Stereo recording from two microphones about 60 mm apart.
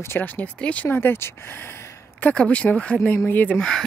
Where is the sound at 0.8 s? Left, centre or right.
Left.